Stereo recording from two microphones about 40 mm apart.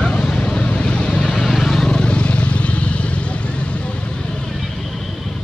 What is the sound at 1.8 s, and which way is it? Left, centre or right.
Vehicle, left.